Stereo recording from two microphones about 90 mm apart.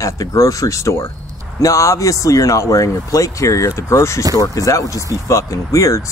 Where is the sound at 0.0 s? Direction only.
35° left (ahead or behind).